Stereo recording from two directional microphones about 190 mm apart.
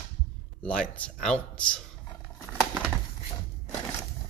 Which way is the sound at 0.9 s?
5° left (ahead or behind).